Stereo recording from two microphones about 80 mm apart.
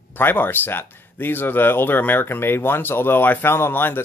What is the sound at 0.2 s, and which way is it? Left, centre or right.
Speech, left.